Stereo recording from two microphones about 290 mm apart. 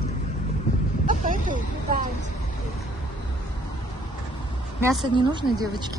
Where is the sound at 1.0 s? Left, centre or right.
Right.